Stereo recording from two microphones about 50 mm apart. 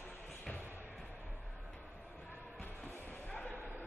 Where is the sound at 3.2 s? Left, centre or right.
Left.